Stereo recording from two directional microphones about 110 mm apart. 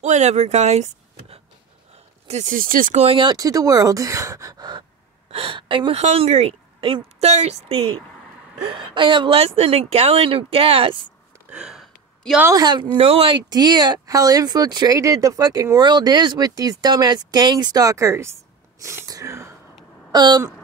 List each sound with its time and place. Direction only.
0.0 s speech: 90° right
2.9 s a woman's voice: 75° right (ahead or behind)
3.2 s speech: 35° right (ahead or behind)
5.3 s speech: 50° right (ahead or behind)
5.9 s a woman's voice: 70° right (ahead or behind)
8.6 s speech: 50° right (ahead or behind)
11.5 s gasp: 5° right (ahead or behind)
12.5 s speech: 40° right (ahead or behind)
12.9 s speech: 60° right (ahead or behind)
13.5 s speech: 40° right (ahead or behind)
15.8 s speech: 40° right (ahead or behind); by 19.5 s 25° right (ahead or behind)
20.1 s a sound: 40° right (ahead or behind)